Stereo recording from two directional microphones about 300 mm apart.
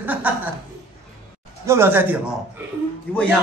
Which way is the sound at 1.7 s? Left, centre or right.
Centre.